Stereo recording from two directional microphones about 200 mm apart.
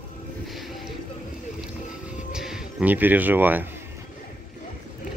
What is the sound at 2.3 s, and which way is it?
Speech, 5° right (ahead or behind).